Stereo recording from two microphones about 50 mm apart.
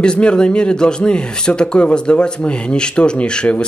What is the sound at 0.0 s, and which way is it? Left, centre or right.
Speech, centre.